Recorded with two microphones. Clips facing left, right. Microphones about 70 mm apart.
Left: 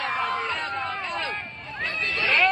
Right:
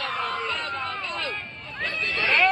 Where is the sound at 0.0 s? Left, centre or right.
Left.